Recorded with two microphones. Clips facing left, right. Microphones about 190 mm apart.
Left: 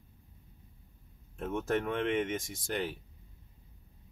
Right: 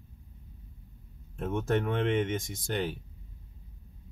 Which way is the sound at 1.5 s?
30° right (ahead or behind).